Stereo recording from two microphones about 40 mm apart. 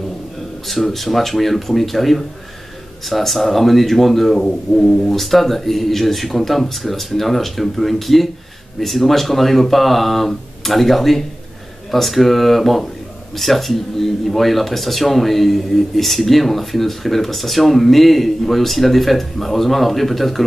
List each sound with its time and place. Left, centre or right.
0.9 s speech: centre